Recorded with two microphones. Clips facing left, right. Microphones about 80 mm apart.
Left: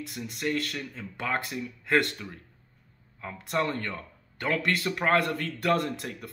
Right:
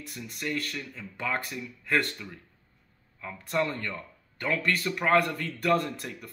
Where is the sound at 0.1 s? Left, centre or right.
Left.